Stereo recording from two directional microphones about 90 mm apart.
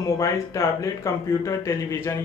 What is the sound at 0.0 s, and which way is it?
Speech, 35° left (ahead or behind).